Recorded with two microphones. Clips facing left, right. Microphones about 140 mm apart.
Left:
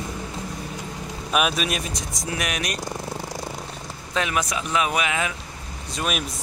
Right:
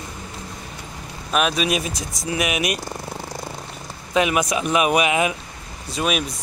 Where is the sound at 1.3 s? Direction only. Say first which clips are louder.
Right 3 dB; 5° left (ahead or behind).